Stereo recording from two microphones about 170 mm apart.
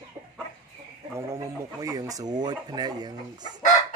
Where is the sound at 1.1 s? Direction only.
20° right (ahead or behind).